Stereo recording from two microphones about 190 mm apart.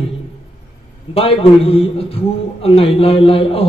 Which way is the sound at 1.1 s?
30° left (ahead or behind).